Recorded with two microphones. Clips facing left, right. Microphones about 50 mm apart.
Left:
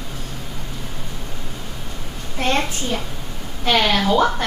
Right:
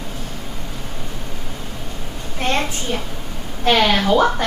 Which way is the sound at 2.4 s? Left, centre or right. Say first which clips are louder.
Even; centre.